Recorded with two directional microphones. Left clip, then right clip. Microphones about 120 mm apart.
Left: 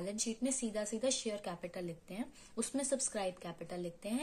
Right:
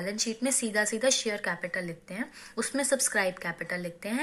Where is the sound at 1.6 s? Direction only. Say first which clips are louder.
Right 10 dB; 30° left (ahead or behind).